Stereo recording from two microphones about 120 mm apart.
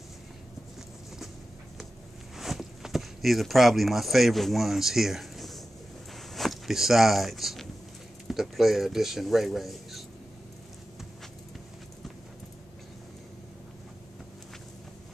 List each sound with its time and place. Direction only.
2.3 s speech: centre (ahead or behind)